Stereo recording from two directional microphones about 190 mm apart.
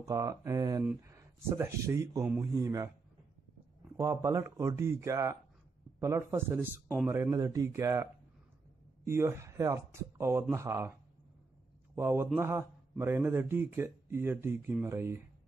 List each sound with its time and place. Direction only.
0.0 s a man's voice: 15° right (ahead or behind)
3.9 s a man's voice: 15° right (ahead or behind)
11.9 s a man's voice: 10° right (ahead or behind)